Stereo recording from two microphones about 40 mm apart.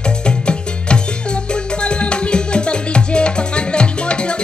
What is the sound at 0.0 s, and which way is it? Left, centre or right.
Music, left.